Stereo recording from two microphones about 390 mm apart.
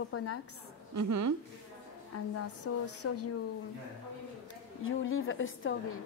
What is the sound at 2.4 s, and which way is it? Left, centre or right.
Speech, left.